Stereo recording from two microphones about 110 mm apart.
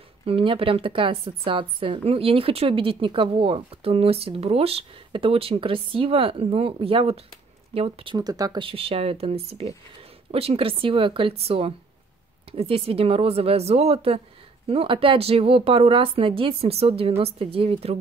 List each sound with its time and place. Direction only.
0.2 s a woman's voice: 55° right (ahead or behind)
8.2 s speech: 35° right (ahead or behind)
8.6 s a woman's voice: 60° right (ahead or behind)